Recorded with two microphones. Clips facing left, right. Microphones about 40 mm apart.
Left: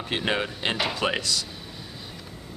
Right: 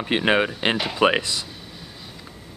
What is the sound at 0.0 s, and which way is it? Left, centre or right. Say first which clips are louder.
Speech: right 7 dB; right.